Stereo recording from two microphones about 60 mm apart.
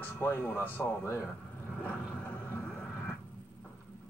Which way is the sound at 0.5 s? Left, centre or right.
Left.